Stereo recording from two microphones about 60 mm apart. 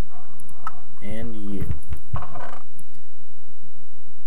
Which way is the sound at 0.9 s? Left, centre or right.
Centre.